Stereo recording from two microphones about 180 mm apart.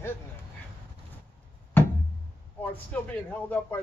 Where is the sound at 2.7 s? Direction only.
10° left (ahead or behind).